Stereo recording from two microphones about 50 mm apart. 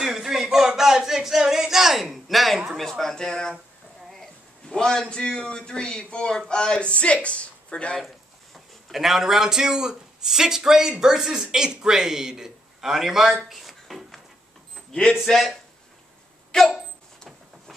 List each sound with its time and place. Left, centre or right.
0.0 s a sound: centre
2.8 s a man's voice: centre
4.6 s a man's voice: centre
8.9 s speech: centre
14.9 s speech: left
15.2 s speech: centre
16.5 s a man's voice: centre